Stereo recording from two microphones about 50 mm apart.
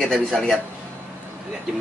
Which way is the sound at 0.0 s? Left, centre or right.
Centre.